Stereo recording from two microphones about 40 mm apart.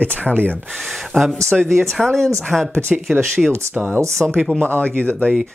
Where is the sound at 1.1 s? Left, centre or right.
Centre.